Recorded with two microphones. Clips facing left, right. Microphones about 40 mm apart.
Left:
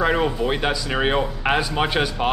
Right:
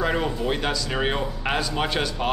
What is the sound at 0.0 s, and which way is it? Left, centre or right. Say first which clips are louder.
Speech: left 4 dB; centre.